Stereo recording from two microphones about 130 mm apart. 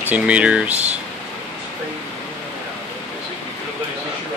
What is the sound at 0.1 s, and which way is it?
Speech, 10° right (ahead or behind).